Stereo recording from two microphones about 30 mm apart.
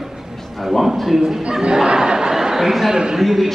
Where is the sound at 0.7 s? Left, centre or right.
Centre.